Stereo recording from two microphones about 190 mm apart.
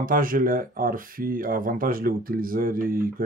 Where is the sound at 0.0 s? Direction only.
50° right (ahead or behind).